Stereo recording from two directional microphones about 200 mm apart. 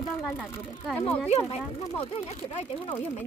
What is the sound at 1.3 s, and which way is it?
Speech, 30° left (ahead or behind).